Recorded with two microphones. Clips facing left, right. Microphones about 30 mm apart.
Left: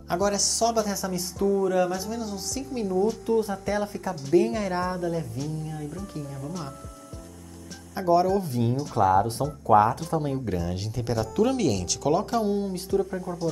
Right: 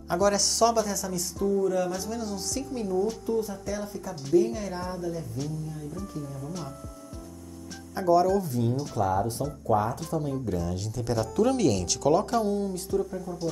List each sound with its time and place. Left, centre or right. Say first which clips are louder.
0.2 s a woman's voice: right 3 dB; centre
0.8 s speech: left 2 dB; left
1.6 s speech: left 3 dB; left
1.9 s speech: left 1 dB; centre
2.7 s speech: left 3 dB; left
3.3 s speech: left 4 dB; left
7.9 s speech: even; left
8.4 s speech: left 1 dB; left
11.3 s speech: even; centre
12.4 s speech: left 2 dB; left